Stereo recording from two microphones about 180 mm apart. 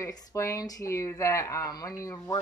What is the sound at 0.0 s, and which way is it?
Speech, 15° left (ahead or behind).